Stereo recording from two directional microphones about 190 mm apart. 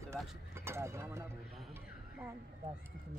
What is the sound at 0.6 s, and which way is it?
Speech, 15° right (ahead or behind).